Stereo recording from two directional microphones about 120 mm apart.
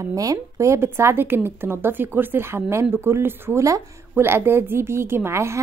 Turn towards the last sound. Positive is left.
turn(degrees=-20)  # may be behind; listen again after turning